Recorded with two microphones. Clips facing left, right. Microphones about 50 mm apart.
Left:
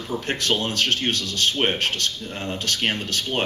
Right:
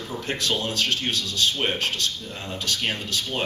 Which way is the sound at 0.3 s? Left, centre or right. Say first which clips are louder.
Left 2 dB; left.